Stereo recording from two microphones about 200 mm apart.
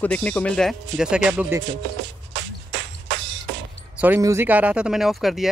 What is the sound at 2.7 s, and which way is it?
Music, 65° right (ahead or behind).